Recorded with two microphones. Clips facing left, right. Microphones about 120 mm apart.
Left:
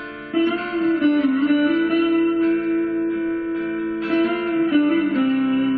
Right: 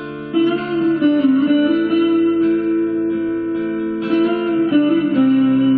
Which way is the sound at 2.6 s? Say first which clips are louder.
Right 4 dB; 20° right (ahead or behind).